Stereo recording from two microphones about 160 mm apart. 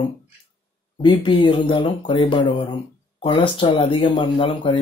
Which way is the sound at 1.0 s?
35° left (ahead or behind).